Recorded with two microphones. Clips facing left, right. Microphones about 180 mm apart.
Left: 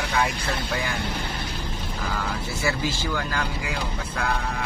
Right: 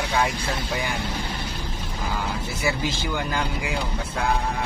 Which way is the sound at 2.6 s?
20° right (ahead or behind).